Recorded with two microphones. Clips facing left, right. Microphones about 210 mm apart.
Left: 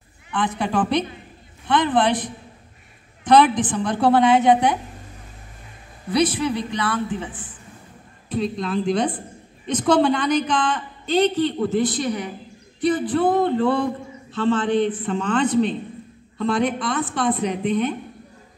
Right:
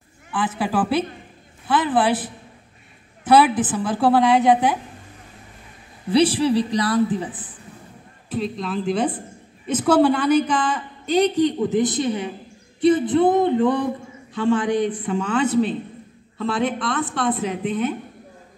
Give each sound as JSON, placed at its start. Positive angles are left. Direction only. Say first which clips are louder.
{"t": 0.3, "sound": "a woman's voice", "louder": "even", "side_deg": -5}
{"t": 6.0, "sound": "a man's voice", "louder": "right 3 dB", "side_deg": -30}
{"t": 8.3, "sound": "a woman's voice", "louder": "left 2 dB", "side_deg": 0}
{"t": 12.8, "sound": "a sound", "louder": "right 3 dB", "side_deg": -25}
{"t": 14.3, "sound": "a woman's voice", "louder": "even", "side_deg": -15}